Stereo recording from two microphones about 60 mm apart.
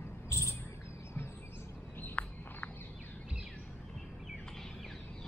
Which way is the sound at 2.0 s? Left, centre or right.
Left.